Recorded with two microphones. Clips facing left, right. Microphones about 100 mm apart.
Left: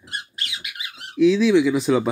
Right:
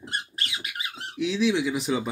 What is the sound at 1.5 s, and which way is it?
Speech, 90° left.